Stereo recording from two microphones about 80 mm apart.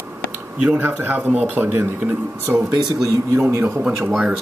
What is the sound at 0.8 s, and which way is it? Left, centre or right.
Speech, right.